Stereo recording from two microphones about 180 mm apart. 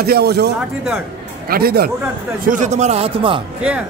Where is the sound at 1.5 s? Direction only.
60° right (ahead or behind).